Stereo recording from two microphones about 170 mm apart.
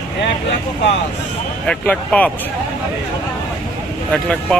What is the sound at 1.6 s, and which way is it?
Speech, 10° left (ahead or behind).